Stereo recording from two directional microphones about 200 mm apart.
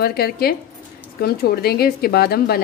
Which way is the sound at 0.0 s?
50° left (ahead or behind).